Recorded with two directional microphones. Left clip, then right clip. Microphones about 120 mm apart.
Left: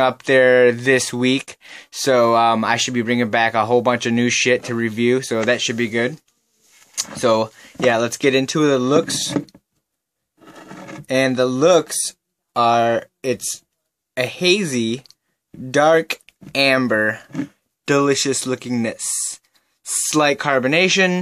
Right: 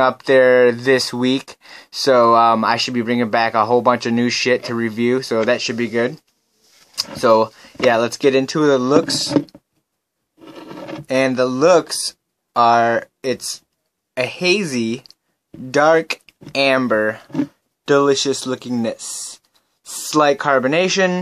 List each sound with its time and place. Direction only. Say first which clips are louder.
0.2 s speech: right 1 dB; 10° left (ahead or behind)
11.1 s speech: right 1 dB; 15° left (ahead or behind)